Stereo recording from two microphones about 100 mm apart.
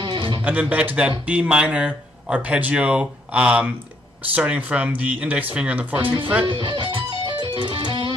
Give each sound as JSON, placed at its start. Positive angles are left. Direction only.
{"t": 0.0, "sound": "guitar", "side_deg": -50}
{"t": 0.4, "sound": "speech", "side_deg": -15}
{"t": 6.4, "sound": "speech", "side_deg": -55}
{"t": 7.0, "sound": "music", "side_deg": -50}